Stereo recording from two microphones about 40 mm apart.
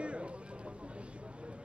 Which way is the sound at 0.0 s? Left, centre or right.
Right.